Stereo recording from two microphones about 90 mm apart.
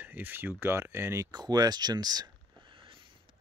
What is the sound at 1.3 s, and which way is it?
Speech, 50° right (ahead or behind).